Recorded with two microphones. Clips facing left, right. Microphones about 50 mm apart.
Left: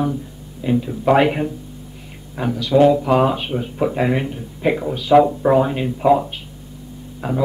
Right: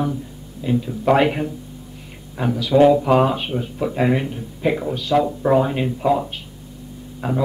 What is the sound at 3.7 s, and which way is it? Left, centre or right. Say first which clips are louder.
Speech: left 4 dB; centre.